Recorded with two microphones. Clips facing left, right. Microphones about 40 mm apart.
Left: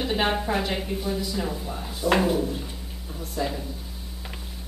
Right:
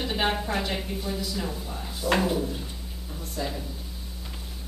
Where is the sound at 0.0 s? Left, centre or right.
Centre.